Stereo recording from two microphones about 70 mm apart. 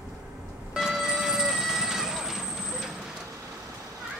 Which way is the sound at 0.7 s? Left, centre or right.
Centre.